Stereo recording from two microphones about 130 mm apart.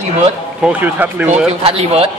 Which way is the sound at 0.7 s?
15° right (ahead or behind).